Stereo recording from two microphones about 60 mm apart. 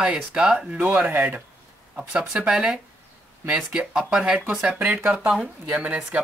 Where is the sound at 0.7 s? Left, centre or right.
Right.